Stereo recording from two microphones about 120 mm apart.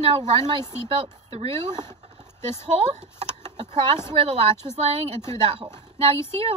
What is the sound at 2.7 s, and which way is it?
Speech, 70° right (ahead or behind).